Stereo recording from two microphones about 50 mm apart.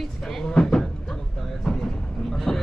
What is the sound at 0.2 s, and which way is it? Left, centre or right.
Cupboard open or close, centre.